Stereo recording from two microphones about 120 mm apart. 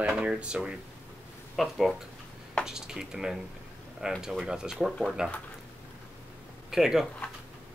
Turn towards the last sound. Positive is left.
turn(degrees=-5)  # may be behind; listen again after turning